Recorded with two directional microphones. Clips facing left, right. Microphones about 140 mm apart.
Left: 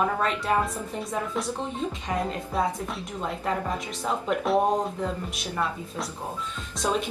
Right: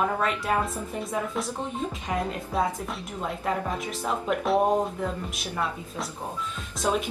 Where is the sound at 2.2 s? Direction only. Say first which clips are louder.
Even; centre (ahead or behind).